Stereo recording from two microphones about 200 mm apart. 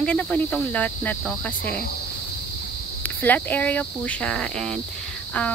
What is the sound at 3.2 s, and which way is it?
Speech, 10° left (ahead or behind).